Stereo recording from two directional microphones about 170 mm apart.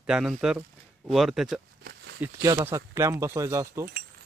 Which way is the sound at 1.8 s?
80° right.